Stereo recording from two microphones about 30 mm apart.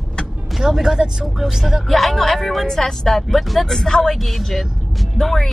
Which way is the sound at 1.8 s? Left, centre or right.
Centre.